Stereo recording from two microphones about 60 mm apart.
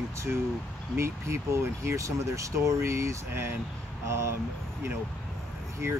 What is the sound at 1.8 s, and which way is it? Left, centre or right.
Speech, right.